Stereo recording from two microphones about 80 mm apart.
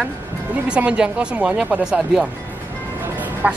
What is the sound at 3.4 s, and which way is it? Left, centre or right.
Speech, centre.